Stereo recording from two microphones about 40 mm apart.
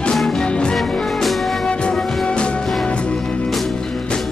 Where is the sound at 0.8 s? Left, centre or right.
Centre.